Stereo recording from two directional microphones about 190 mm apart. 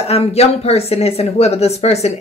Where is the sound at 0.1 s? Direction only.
35° left (ahead or behind).